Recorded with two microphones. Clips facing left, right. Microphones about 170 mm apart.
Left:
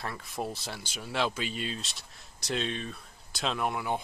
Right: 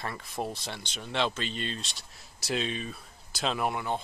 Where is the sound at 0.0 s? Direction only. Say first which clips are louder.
Right 1 dB; centre (ahead or behind).